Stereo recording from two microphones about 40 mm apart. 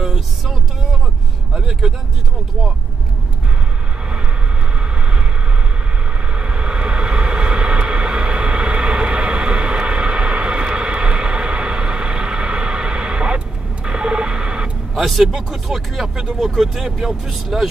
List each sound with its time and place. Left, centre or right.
0.0 s a sound: centre
1.5 s vehicle: centre
6.3 s vehicle: right
13.8 s radio: right
15.0 s speech: centre